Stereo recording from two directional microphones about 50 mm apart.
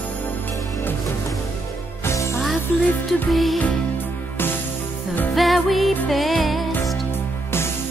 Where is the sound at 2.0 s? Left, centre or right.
Left.